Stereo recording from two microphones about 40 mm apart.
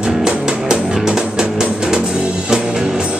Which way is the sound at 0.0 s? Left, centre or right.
Right.